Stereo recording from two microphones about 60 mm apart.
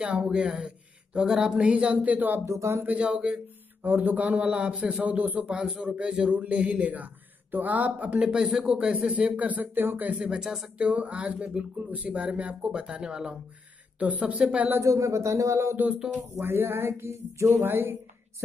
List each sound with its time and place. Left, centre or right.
0.0 s a man's voice: centre
2.4 s a man's voice: right
2.8 s a man's voice: right
3.8 s a man's voice: right
10.0 s a man's voice: centre
14.8 s a man's voice: right
16.3 s speech: right